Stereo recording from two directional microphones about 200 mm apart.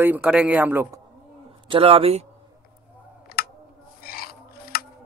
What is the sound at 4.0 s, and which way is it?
Music, 50° left (ahead or behind).